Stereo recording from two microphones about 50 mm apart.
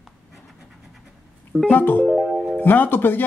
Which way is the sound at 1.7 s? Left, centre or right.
Left.